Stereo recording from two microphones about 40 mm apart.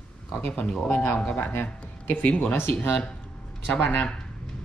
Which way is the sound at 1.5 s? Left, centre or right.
Left.